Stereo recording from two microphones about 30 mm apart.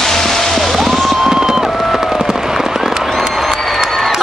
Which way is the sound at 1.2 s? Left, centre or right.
Centre.